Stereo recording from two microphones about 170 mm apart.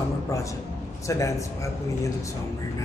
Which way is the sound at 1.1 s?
20° left (ahead or behind).